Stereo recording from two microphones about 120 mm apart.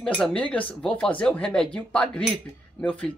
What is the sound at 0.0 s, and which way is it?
A woman's voice, 5° left (ahead or behind).